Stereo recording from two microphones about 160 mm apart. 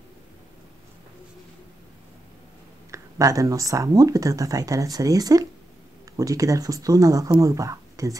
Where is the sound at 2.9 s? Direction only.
20° right (ahead or behind).